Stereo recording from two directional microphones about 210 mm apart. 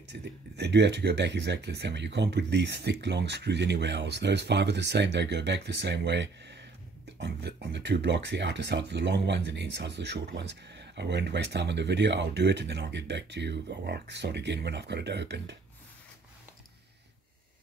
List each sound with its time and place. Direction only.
0.1 s speech: 55° right (ahead or behind)